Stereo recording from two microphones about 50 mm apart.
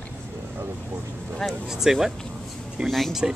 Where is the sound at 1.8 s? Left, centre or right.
Centre.